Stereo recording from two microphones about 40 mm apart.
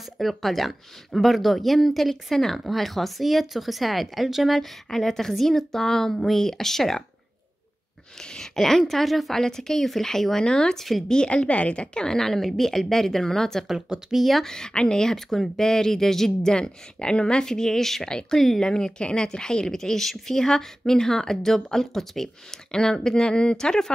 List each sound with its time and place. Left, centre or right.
0.2 s speech: centre
4.8 s speech: centre
8.4 s speech: centre
9.4 s speech: centre
11.2 s speech: left; by 13.7 s centre
13.7 s speech: centre
14.1 s speech: centre
14.4 s speech: centre
15.0 s speech: centre